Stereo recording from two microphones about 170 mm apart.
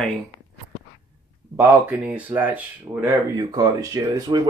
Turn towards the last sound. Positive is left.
turn(degrees=-25)  # may be behind; listen again after turning